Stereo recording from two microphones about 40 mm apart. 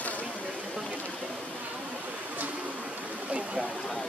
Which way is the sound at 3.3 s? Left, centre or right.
Right.